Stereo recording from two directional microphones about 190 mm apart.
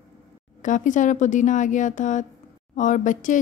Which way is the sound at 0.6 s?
40° left (ahead or behind).